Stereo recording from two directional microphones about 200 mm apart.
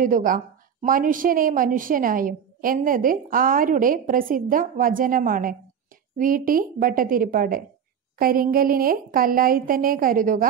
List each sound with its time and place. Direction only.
0.0 s a woman's voice: 40° right (ahead or behind)